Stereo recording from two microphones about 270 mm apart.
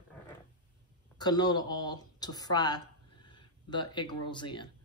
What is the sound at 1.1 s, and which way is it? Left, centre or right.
Speech, centre.